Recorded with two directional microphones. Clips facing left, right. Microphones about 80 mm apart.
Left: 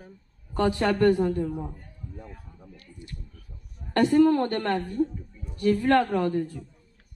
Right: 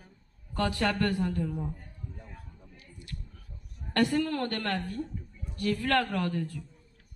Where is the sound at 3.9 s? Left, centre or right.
Left.